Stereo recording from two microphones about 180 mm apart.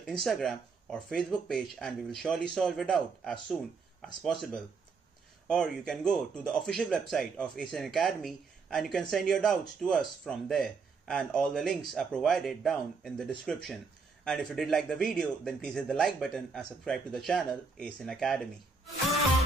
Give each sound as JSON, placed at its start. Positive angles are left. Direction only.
{"t": 0.0, "sound": "speech", "side_deg": 0}